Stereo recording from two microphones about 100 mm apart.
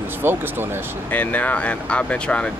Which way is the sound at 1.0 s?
15° left (ahead or behind).